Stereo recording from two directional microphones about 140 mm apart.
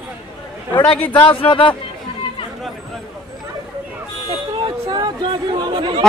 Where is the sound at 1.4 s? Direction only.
40° left (ahead or behind).